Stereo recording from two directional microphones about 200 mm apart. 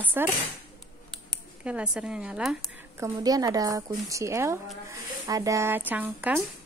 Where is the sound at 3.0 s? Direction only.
20° right (ahead or behind).